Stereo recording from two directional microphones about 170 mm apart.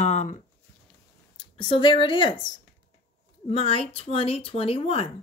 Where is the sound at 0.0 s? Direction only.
45° left (ahead or behind).